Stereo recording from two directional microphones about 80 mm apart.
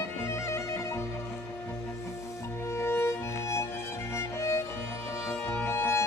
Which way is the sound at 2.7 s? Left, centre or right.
Left.